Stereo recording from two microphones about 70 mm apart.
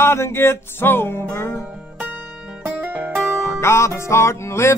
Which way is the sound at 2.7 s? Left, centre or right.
Right.